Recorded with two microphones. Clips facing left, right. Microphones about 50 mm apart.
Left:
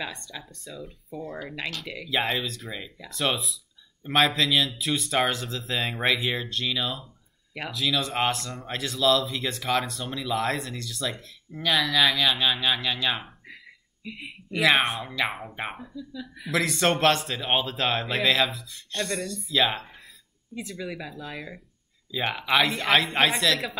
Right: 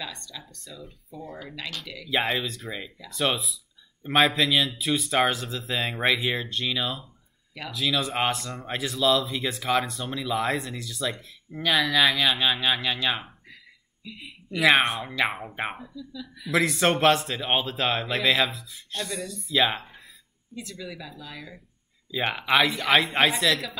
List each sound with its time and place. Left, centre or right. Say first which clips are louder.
0.0 s speech: left 2 dB; left
0.4 s speech: left 3 dB; centre
14.6 s speech: right 1 dB; centre
15.9 s speech: left 1 dB; left
16.4 s speech: right 1 dB; centre
20.5 s speech: left 3 dB; left
22.1 s speech: right 1 dB; centre